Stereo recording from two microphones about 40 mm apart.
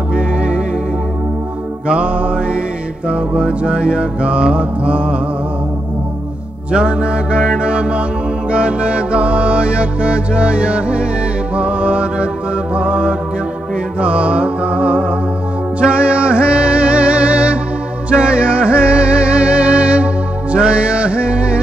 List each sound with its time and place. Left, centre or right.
0.1 s music: right
1.9 s music: right
6.7 s music: right
12.7 s mantra: right
13.9 s music: right